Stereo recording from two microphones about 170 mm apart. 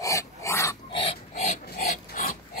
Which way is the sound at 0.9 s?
35° left (ahead or behind).